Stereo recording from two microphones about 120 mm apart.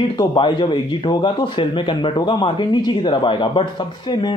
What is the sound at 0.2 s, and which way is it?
A man's voice, 40° left (ahead or behind).